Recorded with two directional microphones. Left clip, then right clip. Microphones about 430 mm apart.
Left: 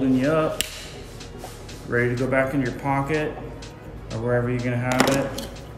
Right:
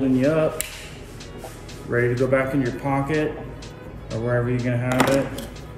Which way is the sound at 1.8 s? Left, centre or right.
Centre.